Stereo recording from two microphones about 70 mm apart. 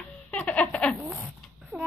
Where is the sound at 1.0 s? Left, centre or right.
Centre.